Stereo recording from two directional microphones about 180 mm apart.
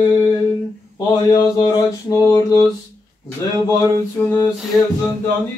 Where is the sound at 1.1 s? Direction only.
25° left (ahead or behind).